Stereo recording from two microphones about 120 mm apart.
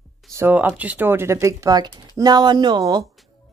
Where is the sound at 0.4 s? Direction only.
20° right (ahead or behind).